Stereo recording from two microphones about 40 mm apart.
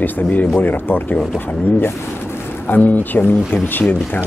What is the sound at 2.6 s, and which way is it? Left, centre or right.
Speech, left.